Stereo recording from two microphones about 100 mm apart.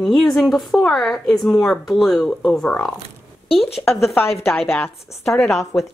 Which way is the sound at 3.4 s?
75° left (ahead or behind).